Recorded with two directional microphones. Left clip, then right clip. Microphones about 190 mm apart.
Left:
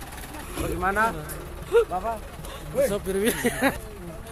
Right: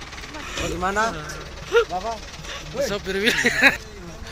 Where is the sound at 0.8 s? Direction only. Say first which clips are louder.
Right 1 dB; 60° right (ahead or behind).